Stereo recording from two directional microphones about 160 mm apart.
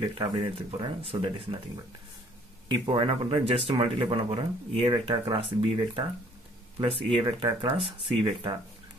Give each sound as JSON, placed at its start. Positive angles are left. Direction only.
{"t": 0.0, "sound": "speech", "side_deg": -30}
{"t": 2.7, "sound": "speech", "side_deg": -30}